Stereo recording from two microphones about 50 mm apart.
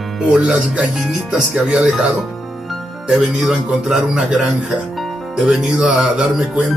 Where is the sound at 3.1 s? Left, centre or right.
Centre.